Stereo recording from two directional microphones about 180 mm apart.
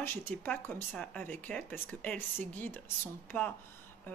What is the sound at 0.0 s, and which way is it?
Speech, 15° left (ahead or behind).